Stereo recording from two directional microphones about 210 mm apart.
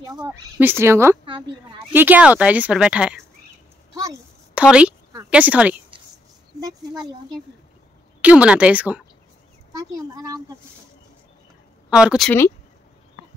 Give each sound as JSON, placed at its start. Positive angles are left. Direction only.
{"t": 0.0, "sound": "speech", "side_deg": -20}
{"t": 1.2, "sound": "a woman's voice", "side_deg": -25}
{"t": 1.9, "sound": "speech", "side_deg": -10}
{"t": 4.6, "sound": "speech", "side_deg": -5}
{"t": 6.6, "sound": "speech", "side_deg": -20}
{"t": 8.2, "sound": "speech", "side_deg": -5}
{"t": 9.7, "sound": "speech", "side_deg": -15}
{"t": 11.9, "sound": "speech", "side_deg": -5}